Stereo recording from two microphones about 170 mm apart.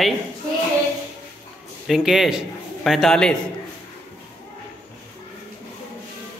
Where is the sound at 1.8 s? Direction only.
Centre (ahead or behind).